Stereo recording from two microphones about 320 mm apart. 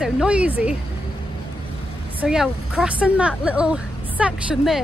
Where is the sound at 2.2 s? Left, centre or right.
Centre.